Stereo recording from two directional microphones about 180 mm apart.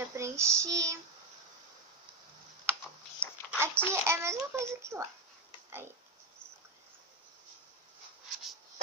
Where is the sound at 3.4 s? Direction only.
10° right (ahead or behind).